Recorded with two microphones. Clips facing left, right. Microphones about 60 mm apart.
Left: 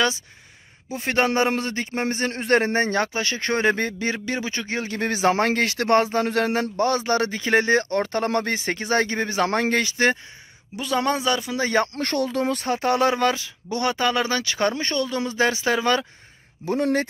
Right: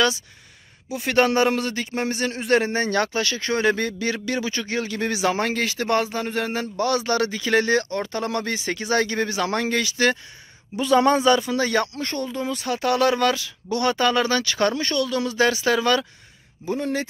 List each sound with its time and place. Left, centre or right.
0.8 s a man's voice: left
1.1 s speech: left
2.9 s speech: left
3.3 s speech: left
5.3 s speech: left
6.8 s speech: left
7.9 s speech: left
9.4 s speech: left
10.8 s speech: centre
11.5 s speech: left
12.0 s speech: left
12.6 s speech: left
16.6 s speech: left